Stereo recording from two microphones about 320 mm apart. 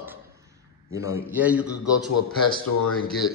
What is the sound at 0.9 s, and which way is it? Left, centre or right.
Speech, centre.